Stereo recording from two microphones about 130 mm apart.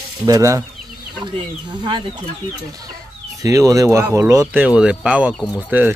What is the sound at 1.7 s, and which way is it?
Speech, 35° right (ahead or behind).